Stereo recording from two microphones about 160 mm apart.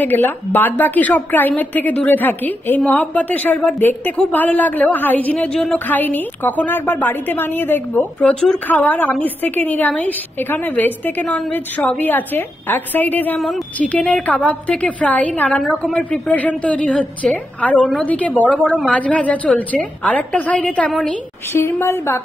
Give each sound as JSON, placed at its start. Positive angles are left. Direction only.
{"t": 0.0, "sound": "a woman's voice", "side_deg": 10}